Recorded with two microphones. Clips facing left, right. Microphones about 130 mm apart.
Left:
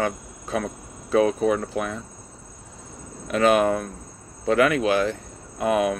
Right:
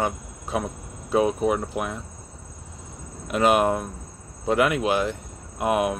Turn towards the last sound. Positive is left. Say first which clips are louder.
# left 1 dB
turn(degrees=-15)  # may be behind; listen again after turning